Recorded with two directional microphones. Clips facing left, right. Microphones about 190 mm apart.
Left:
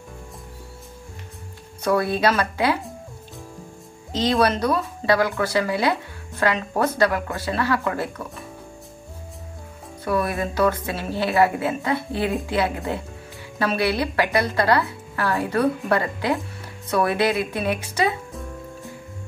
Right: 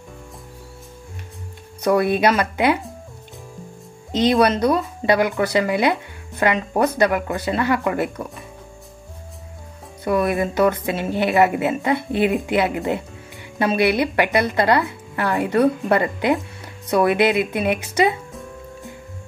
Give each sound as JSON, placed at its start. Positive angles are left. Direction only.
{"t": 1.8, "sound": "speech", "side_deg": -20}
{"t": 4.1, "sound": "speech", "side_deg": -20}
{"t": 10.0, "sound": "speech", "side_deg": -20}